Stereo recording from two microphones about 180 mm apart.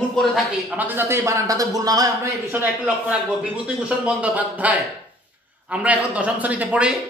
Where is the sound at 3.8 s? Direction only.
5° right (ahead or behind).